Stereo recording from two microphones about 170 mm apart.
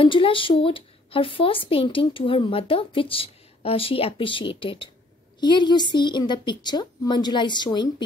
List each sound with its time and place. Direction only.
0.0 s a woman's voice: 30° left (ahead or behind)